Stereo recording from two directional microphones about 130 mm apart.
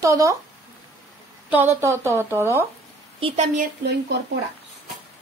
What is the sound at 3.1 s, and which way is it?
Speech, 45° right (ahead or behind).